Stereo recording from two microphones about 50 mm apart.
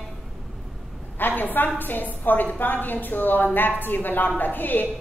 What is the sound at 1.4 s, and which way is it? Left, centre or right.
A woman's voice, left.